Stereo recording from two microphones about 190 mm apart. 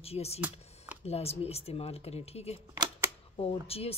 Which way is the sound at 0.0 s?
35° left (ahead or behind).